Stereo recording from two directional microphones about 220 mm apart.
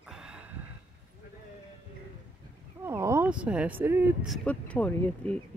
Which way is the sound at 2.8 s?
10° right (ahead or behind).